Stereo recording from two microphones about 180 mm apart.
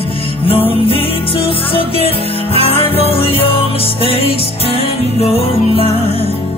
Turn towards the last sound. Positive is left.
turn(degrees=30)  # may be behind; listen again after turning